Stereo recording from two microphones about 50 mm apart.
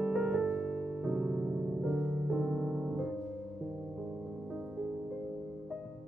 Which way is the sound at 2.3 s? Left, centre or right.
Right.